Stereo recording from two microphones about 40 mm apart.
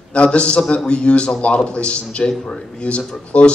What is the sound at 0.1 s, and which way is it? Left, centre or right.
A man's voice, left.